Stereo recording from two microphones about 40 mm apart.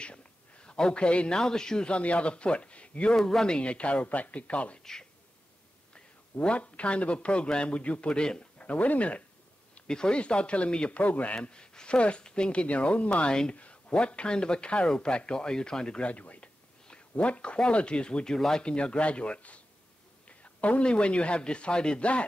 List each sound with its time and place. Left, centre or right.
0.0 s a sound: left
1.4 s speech: centre
3.2 s speech: centre
3.4 s speech: left
6.4 s speech: left
8.5 s speech: left
9.8 s speech: centre; by 11.3 s left
11.3 s speech: left
13.3 s speech: left
13.6 s speech: left
16.1 s speech: left